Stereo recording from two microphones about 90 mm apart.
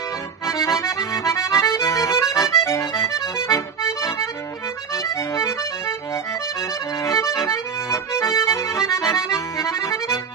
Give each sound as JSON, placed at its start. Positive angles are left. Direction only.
{"t": 0.8, "sound": "accordion", "side_deg": 35}
{"t": 5.4, "sound": "accordion", "side_deg": 30}
{"t": 7.2, "sound": "accordion", "side_deg": 35}